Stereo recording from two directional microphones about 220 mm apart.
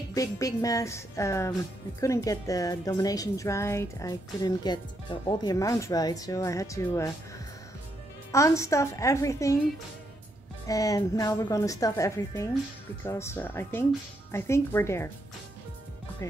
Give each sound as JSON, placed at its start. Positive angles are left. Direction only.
{"t": 0.1, "sound": "a woman's voice", "side_deg": 15}
{"t": 8.3, "sound": "a woman's voice", "side_deg": 15}
{"t": 10.7, "sound": "a woman's voice", "side_deg": 15}
{"t": 16.2, "sound": "a woman's voice", "side_deg": 15}